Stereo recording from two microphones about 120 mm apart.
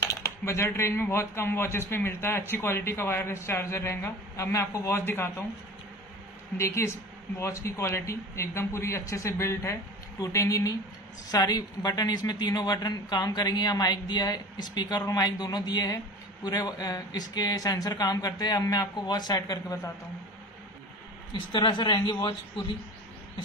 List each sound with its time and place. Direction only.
0.0 s speech: 25° left (ahead or behind)
6.5 s speech: 25° left (ahead or behind)
21.3 s speech: 40° left (ahead or behind)